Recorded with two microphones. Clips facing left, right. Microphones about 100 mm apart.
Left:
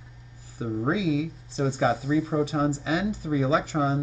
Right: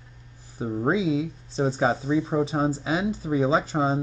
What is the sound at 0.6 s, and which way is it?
Speech, 30° right (ahead or behind).